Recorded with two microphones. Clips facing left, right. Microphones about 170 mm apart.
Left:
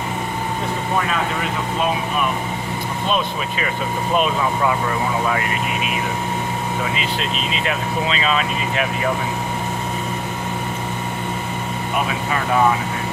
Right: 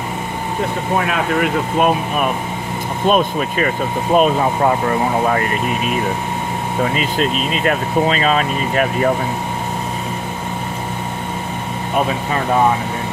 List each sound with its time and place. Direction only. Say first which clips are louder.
0.9 s speech: right 5 dB; 60° right (ahead or behind); by 5.4 s 45° right (ahead or behind)
6.8 s speech: right 6 dB; 45° right (ahead or behind)